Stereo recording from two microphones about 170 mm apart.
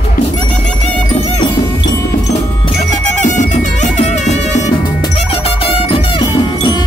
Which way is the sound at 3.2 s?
45° left (ahead or behind).